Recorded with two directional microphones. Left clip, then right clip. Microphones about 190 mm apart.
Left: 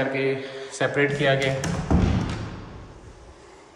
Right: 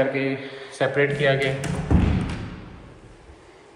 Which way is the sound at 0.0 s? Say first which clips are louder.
Right 1 dB; 10° left (ahead or behind).